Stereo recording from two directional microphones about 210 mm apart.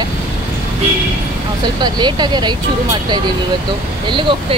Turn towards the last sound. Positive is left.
turn(degrees=-25)  # may be behind; listen again after turning